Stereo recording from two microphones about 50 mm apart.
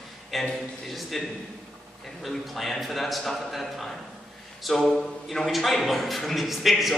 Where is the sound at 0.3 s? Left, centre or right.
Centre.